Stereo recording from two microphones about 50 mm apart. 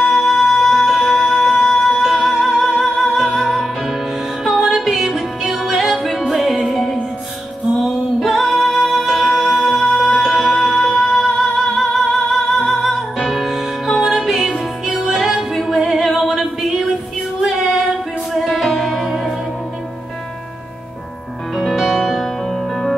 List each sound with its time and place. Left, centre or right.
0.0 s music: centre
17.4 s female singing: centre
18.3 s music: centre
21.5 s music: centre